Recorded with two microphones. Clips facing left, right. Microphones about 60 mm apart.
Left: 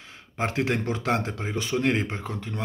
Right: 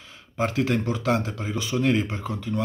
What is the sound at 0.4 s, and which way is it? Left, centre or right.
Speech, left.